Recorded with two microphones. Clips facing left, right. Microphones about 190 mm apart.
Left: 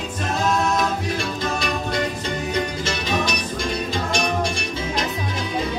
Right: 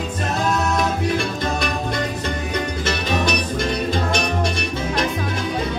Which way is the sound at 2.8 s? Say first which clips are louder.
Right 2 dB; 55° right (ahead or behind).